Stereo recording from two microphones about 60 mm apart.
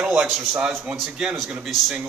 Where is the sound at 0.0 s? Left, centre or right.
Centre.